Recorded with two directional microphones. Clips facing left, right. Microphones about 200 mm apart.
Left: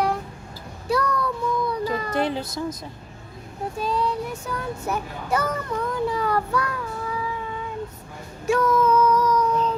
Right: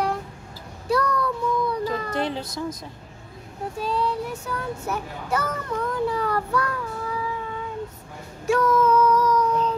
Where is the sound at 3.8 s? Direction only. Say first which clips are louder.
Even; 15° left (ahead or behind).